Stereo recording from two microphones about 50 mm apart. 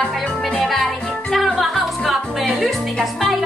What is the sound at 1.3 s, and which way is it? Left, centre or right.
Music, centre.